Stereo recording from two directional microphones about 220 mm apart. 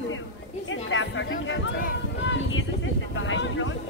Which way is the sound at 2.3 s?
60° left (ahead or behind).